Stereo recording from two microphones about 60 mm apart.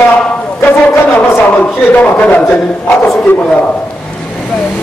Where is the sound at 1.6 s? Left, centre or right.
Left.